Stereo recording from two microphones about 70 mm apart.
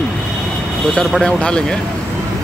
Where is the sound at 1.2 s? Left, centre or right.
Centre.